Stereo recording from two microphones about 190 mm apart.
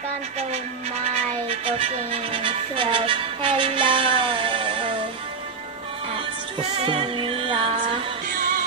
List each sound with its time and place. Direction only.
1.0 s meow: 30° right (ahead or behind)
2.3 s music: 30° right (ahead or behind)
6.8 s music: 30° right (ahead or behind)